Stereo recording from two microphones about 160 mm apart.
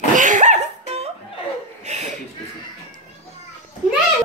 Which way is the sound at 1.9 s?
45° right (ahead or behind).